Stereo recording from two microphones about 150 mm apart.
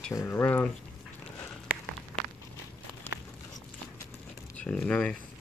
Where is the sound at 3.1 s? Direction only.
15° left (ahead or behind).